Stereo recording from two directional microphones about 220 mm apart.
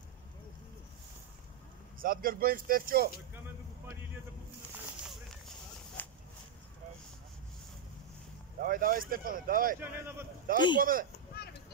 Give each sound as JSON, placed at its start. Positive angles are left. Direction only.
{"t": 2.0, "sound": "speech", "side_deg": -40}
{"t": 6.0, "sound": "a sound", "side_deg": 5}
{"t": 8.5, "sound": "speech", "side_deg": -40}
{"t": 9.8, "sound": "speech", "side_deg": -10}
{"t": 10.5, "sound": "speech", "side_deg": -40}